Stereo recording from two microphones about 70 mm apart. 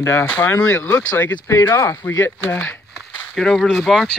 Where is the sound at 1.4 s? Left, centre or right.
Left.